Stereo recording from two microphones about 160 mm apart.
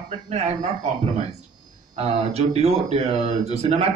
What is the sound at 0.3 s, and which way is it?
Speech, 45° right (ahead or behind).